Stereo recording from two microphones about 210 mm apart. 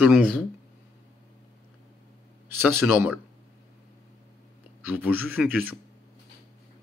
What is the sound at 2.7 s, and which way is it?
Speech, 10° right (ahead or behind).